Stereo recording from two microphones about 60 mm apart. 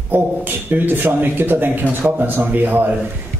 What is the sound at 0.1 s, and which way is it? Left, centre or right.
Speech, right.